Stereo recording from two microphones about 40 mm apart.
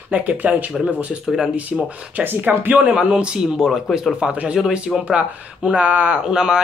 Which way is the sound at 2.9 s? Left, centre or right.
Centre.